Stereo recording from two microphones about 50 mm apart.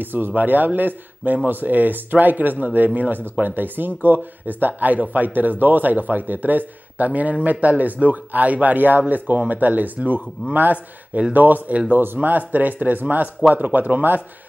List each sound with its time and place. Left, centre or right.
0.0 s speech: right